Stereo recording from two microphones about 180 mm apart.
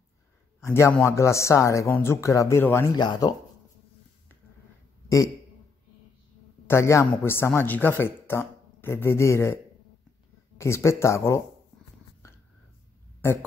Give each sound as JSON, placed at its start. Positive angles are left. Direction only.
{"t": 0.7, "sound": "speech", "side_deg": 15}
{"t": 3.0, "sound": "speech", "side_deg": 25}
{"t": 6.7, "sound": "speech", "side_deg": 15}
{"t": 10.6, "sound": "speech", "side_deg": 15}